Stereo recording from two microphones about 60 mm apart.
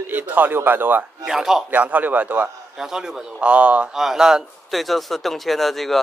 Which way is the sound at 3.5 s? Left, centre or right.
Right.